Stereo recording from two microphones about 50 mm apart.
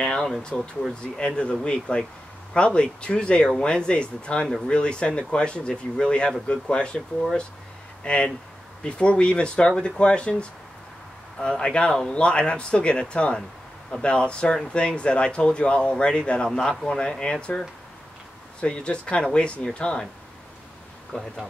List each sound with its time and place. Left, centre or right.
0.5 s speech: centre
11.3 s speech: centre
21.1 s speech: centre